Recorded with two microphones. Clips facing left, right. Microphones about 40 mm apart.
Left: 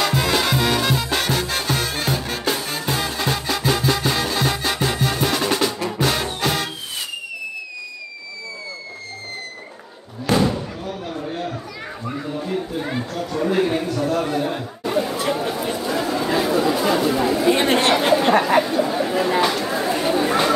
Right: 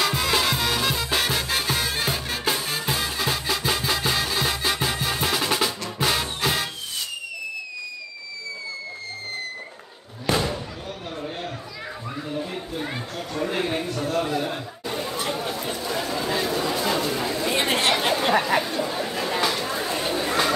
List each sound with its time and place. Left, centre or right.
0.0 s music: centre
12.4 s chatter: centre
13.5 s a sound: centre
14.2 s chatter: left
15.0 s a sound: centre
17.6 s chatter: left
17.9 s chatter: centre